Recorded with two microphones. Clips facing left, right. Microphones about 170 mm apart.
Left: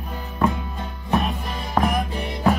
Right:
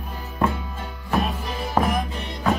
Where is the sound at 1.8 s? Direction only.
10° right (ahead or behind).